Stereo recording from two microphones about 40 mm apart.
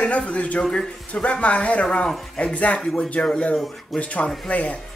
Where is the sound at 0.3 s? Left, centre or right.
Left.